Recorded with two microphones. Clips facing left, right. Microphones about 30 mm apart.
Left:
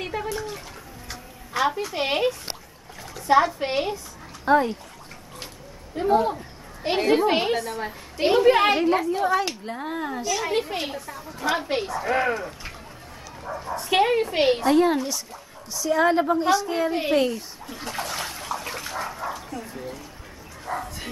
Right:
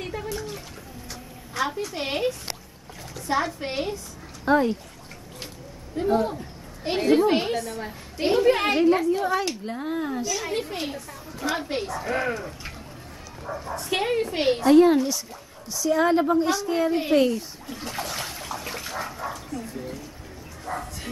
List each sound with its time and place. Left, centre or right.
0.0 s bathtub: left
0.3 s a woman's voice: centre
3.5 s a woman's voice: centre
4.5 s speech: centre
5.9 s a woman's voice: centre
14.7 s speech: centre
15.7 s a sound: centre
20.6 s bow-wow: centre